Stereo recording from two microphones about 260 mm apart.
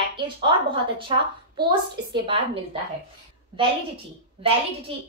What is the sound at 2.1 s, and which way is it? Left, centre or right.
Speech, right.